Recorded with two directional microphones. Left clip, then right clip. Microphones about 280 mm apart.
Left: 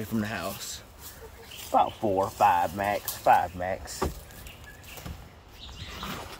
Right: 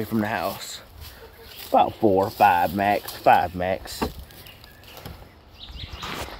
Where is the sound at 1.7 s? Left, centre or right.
Right.